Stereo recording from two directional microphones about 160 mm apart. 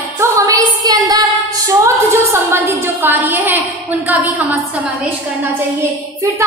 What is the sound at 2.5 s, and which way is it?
A woman's voice, 15° right (ahead or behind).